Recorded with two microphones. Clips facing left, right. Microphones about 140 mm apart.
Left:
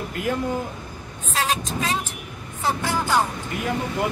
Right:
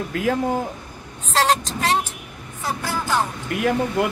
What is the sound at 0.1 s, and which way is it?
Speech, 90° right.